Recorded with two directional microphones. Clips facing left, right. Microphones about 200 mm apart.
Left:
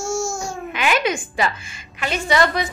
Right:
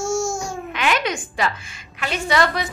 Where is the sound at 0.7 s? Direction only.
5° left (ahead or behind).